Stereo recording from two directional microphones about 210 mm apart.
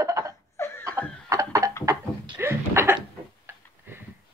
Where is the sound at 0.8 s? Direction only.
15° right (ahead or behind).